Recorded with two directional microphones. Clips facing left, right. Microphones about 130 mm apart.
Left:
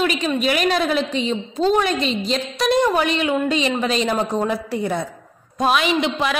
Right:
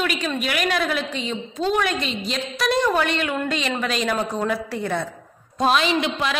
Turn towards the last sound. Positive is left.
turn(degrees=20)  # may be behind; listen again after turning